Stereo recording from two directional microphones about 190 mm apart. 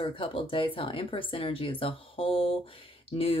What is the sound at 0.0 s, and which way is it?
Speech, 30° left (ahead or behind).